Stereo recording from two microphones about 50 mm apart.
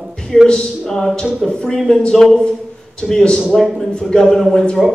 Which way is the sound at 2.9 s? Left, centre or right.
Centre.